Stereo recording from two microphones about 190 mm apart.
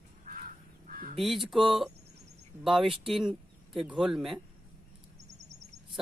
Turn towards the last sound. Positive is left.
turn(degrees=0)  # may be behind; listen again after turning